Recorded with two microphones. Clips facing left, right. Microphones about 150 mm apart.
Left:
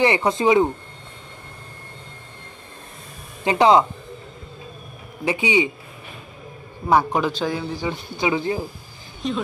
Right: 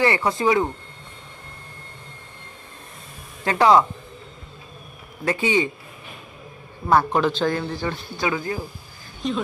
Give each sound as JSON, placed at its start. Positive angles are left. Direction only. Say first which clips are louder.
{"t": 0.0, "sound": "speech", "louder": "left 2 dB", "side_deg": 20}
{"t": 3.4, "sound": "speech", "louder": "left 1 dB", "side_deg": 20}
{"t": 5.2, "sound": "speech", "louder": "left 1 dB", "side_deg": 15}
{"t": 6.9, "sound": "speech", "louder": "even", "side_deg": 15}
{"t": 9.2, "sound": "speech", "louder": "even", "side_deg": 0}